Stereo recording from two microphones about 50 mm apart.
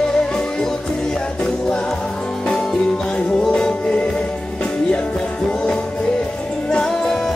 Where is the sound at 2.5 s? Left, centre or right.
Centre.